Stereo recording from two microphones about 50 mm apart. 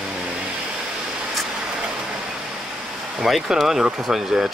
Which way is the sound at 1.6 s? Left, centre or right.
Centre.